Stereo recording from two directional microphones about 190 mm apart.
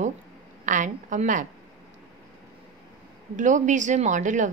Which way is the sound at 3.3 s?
40° right (ahead or behind).